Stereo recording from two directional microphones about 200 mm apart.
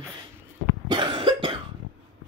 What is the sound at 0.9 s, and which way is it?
Cough, 25° right (ahead or behind).